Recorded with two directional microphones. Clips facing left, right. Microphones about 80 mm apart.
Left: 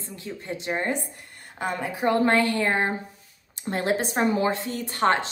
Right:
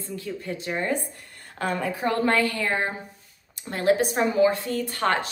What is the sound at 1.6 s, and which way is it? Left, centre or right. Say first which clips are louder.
A woman's voice: right 1 dB; centre.